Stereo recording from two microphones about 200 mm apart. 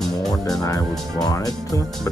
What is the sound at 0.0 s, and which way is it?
Music, centre (ahead or behind).